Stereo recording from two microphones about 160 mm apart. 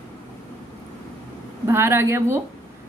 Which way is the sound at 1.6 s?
15° right (ahead or behind).